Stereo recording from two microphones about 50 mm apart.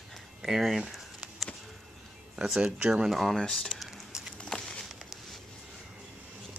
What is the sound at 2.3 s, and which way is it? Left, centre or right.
Speech, centre.